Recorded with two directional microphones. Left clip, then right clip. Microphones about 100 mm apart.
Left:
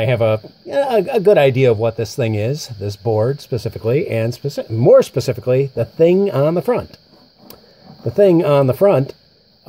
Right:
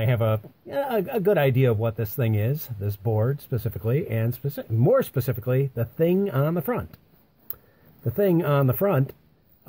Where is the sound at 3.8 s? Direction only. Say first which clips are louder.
Left 10 dB; 20° right (ahead or behind).